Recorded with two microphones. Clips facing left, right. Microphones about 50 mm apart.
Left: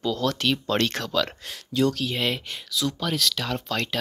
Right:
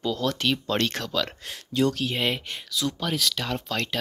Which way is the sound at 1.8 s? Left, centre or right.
Right.